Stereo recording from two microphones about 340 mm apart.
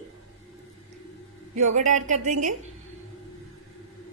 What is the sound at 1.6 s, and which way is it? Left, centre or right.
Speech, right.